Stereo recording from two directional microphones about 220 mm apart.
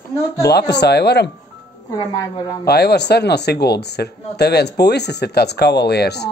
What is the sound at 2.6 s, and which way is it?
Speech, 45° left (ahead or behind).